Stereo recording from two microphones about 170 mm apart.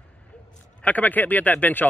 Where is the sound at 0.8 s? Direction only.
10° left (ahead or behind).